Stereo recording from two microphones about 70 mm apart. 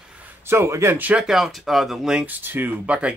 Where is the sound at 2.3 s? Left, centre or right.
Right.